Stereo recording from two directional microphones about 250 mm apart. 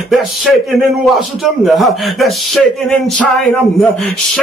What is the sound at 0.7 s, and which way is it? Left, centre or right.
Speech, centre.